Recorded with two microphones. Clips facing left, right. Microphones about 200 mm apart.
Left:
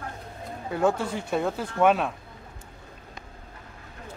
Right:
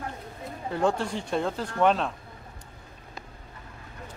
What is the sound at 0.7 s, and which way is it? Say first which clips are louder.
Speech: left 1 dB; 5° left (ahead or behind).